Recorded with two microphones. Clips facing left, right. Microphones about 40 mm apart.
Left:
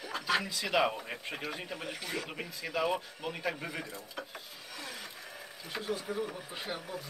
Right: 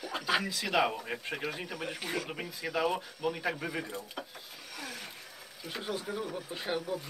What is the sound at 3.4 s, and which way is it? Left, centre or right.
Speech, centre.